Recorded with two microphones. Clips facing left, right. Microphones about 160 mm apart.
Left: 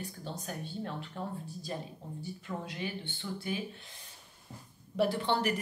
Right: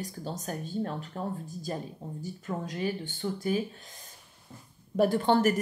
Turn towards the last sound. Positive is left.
turn(degrees=-45)  # may be behind; listen again after turning